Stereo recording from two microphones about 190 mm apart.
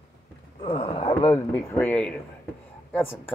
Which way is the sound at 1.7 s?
5° left (ahead or behind).